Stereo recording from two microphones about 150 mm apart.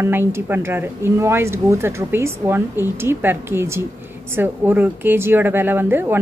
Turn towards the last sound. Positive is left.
turn(degrees=-15)  # may be behind; listen again after turning